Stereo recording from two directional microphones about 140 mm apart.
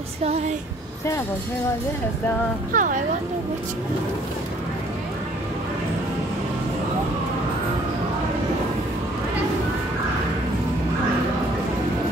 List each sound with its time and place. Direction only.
2.7 s speech: 70° right (ahead or behind)